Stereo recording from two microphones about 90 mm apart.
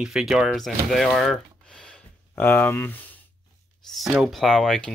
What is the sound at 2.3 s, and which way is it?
Speech, 20° left (ahead or behind).